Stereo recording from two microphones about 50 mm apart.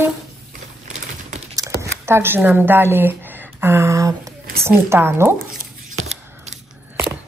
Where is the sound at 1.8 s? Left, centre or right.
Right.